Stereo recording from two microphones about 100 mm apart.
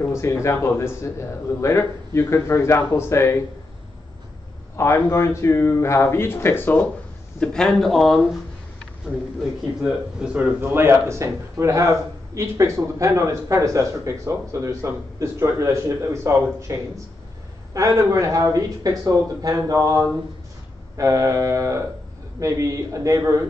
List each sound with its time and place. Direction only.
0.0 s speech: 30° left (ahead or behind)
4.7 s speech: 30° left (ahead or behind)
7.3 s speech: 10° left (ahead or behind)
10.2 s a man's voice: 15° right (ahead or behind); by 23.4 s 30° right (ahead or behind)